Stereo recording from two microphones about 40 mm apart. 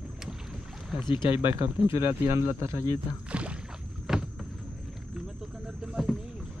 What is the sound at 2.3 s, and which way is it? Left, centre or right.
Speech, right.